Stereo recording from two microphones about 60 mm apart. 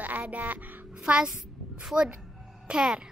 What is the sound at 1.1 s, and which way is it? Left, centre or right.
Speech, centre.